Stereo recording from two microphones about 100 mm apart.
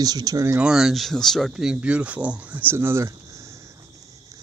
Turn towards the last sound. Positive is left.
turn(degrees=-25)  # may be behind; listen again after turning